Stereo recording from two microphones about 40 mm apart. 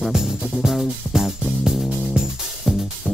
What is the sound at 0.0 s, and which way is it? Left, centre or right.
Music, centre.